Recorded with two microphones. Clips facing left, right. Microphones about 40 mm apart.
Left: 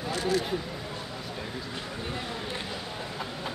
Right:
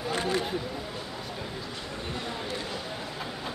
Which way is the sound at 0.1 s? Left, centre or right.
Right.